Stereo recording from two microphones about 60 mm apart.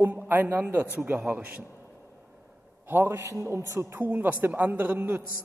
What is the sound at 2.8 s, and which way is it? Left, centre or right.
A man's voice, right.